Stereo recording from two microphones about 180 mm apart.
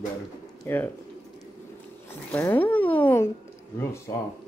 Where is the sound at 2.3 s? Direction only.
10° left (ahead or behind).